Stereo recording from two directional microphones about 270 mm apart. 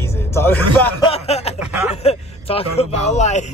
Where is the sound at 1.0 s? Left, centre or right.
Left.